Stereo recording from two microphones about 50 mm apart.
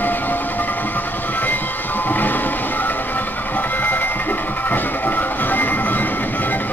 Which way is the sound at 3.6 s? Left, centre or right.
Left.